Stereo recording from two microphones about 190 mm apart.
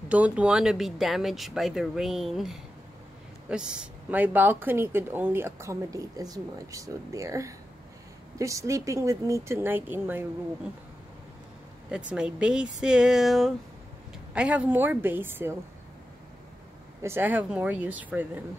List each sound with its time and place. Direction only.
0.1 s speech: 5° right (ahead or behind)
12.1 s speech: 5° right (ahead or behind)
17.0 s speech: 10° right (ahead or behind)